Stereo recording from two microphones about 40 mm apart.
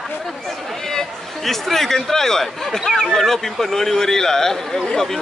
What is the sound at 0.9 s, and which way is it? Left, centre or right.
Speech, centre.